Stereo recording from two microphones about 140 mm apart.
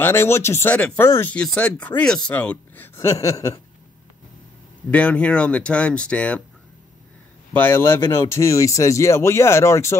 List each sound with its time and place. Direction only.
0.0 s speech: 15° left (ahead or behind)
4.9 s speech: 10° left (ahead or behind)
7.5 s speech: 15° left (ahead or behind)